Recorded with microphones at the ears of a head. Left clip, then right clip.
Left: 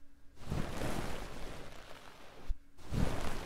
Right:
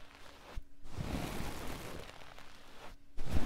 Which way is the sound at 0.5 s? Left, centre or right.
Left.